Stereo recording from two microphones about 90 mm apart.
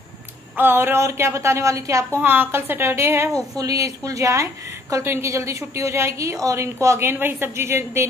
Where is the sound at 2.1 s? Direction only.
25° right (ahead or behind).